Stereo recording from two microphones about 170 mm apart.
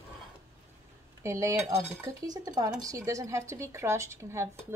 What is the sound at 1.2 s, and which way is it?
Speech, 20° right (ahead or behind).